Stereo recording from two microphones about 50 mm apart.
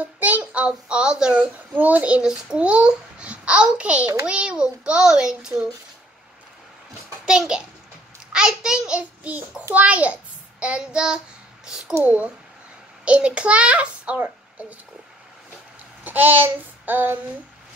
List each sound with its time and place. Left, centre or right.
0.2 s a child's voice: right
1.8 s a child's voice: right
2.2 s a child's voice: centre
7.2 s a child's voice: centre
13.0 s a child's voice: right
16.0 s child singing: right